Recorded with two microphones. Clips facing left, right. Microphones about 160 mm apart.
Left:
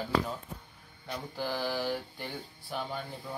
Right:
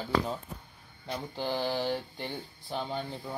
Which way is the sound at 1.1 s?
25° right (ahead or behind).